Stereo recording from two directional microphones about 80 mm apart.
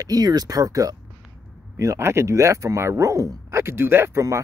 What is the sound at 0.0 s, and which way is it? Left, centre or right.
Speech, right.